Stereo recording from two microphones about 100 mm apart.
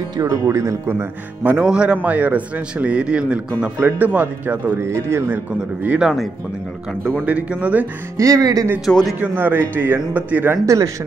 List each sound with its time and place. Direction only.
0.5 s speech: 30° right (ahead or behind)
4.7 s speech: 25° right (ahead or behind); by 6.2 s 5° right (ahead or behind)
7.2 s speech: 10° right (ahead or behind)
8.2 s speech: 35° right (ahead or behind)
8.8 s a man's voice: centre (ahead or behind)
9.2 s speech: 20° right (ahead or behind)